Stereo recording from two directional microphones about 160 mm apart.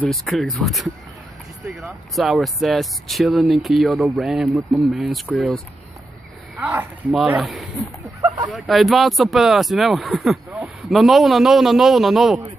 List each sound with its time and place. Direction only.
0.1 s speech: centre (ahead or behind)
8.2 s a sound: 20° right (ahead or behind)
8.5 s speech: centre (ahead or behind)